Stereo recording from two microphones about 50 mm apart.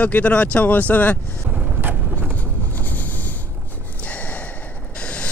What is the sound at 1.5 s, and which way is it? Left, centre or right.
Vehicle, centre.